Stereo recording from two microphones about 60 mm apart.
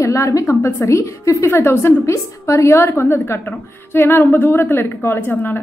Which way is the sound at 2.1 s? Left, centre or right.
Left.